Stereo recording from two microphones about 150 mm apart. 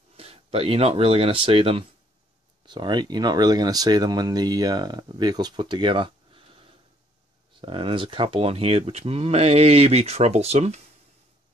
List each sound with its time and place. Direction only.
0.1 s speech: 40° right (ahead or behind)